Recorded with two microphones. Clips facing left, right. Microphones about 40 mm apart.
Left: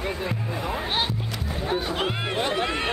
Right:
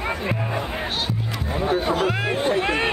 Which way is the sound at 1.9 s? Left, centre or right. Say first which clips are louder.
Right 5 dB; left.